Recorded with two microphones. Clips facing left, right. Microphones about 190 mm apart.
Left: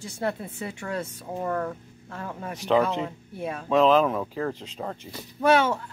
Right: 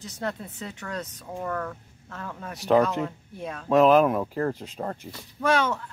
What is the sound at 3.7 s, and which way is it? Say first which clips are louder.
Speech: right 2 dB; 10° right (ahead or behind).